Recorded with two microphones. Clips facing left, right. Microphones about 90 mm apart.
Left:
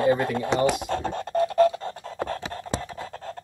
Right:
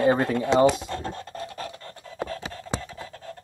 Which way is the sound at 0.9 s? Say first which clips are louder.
Left 6 dB; 70° left (ahead or behind).